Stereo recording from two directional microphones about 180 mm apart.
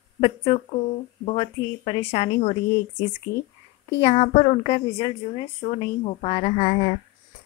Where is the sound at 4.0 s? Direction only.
40° left (ahead or behind).